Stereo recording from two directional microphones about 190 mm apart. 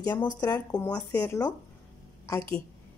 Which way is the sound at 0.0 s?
20° left (ahead or behind).